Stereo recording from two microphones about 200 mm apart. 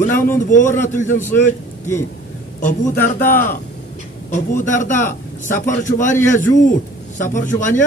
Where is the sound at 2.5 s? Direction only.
40° left (ahead or behind).